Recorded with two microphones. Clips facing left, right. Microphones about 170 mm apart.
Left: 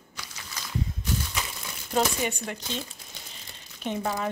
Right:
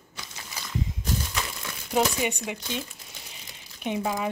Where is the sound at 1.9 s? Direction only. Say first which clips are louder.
Right 1 dB; 10° right (ahead or behind).